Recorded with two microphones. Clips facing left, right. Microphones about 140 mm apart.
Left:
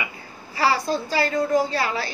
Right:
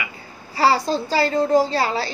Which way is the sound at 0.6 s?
30° right (ahead or behind).